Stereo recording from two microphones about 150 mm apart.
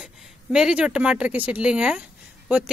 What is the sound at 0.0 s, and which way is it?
A woman's voice, 5° right (ahead or behind).